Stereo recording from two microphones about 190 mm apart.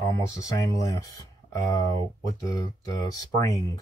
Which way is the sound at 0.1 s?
15° left (ahead or behind).